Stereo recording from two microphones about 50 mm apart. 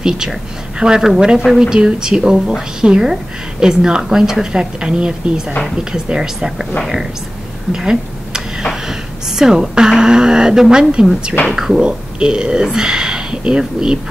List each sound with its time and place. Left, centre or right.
0.0 s a woman's voice: centre
7.7 s a sound: centre
8.8 s a woman's voice: centre
11.8 s speech: centre